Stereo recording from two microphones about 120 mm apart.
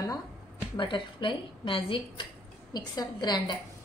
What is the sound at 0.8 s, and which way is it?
A woman's voice, 40° left (ahead or behind).